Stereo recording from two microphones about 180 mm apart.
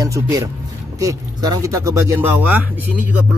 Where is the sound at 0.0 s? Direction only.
20° right (ahead or behind).